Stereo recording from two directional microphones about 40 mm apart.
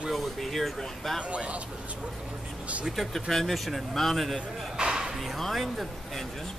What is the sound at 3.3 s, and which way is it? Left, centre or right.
Speech, centre.